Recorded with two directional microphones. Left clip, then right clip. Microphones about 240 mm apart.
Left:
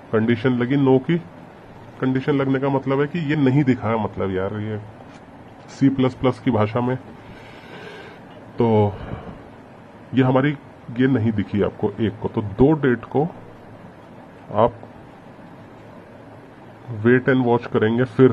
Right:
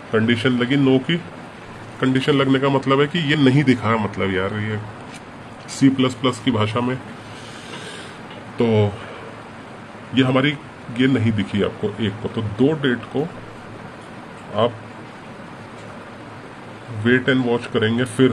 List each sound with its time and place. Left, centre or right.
0.1 s a man's voice: centre
2.0 s a man's voice: centre
5.8 s a man's voice: centre
8.5 s speech: left
10.1 s a man's voice: centre
17.0 s speech: centre